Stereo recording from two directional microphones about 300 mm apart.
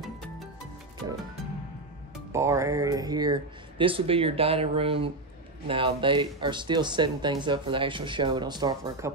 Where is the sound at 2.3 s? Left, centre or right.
Centre.